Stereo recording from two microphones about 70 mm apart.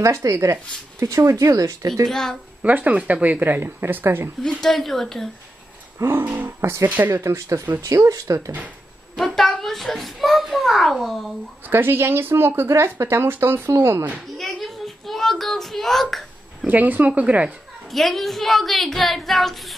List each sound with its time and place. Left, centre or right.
0.0 s speech: right
2.0 s a woman's voice: centre
2.6 s speech: centre
4.4 s a woman's voice: centre
5.9 s speech: right
9.1 s a child's voice: centre
11.6 s speech: right
14.4 s a sound: centre
16.6 s speech: right
17.8 s a woman's voice: centre